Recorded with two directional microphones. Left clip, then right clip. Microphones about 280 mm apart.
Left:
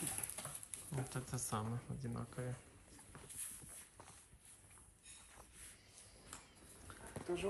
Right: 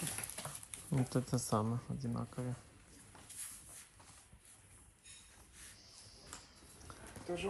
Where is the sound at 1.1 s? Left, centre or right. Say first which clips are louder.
Right 8 dB; centre.